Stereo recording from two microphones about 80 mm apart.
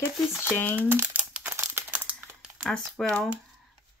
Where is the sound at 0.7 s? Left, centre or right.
Right.